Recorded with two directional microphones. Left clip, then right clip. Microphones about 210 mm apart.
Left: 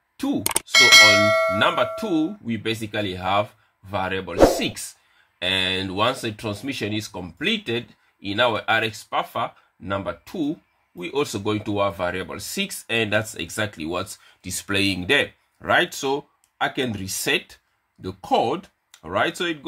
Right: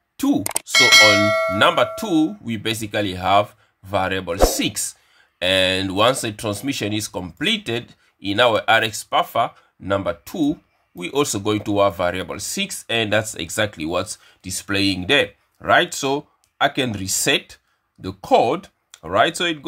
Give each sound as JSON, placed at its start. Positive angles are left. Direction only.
{"t": 0.7, "sound": "bell", "side_deg": 0}
{"t": 1.6, "sound": "speech", "side_deg": -25}